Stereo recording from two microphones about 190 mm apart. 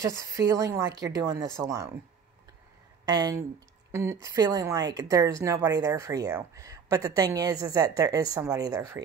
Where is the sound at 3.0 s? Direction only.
20° right (ahead or behind).